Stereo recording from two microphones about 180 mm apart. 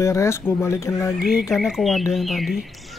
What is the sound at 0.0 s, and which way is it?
Speech, 15° left (ahead or behind).